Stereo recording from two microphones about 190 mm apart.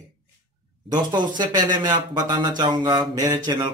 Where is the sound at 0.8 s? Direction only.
20° right (ahead or behind).